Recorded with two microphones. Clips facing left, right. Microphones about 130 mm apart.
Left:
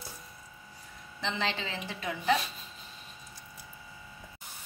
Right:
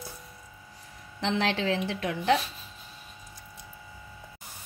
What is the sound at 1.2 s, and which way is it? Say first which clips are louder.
A woman's voice: right 6 dB; 70° right (ahead or behind).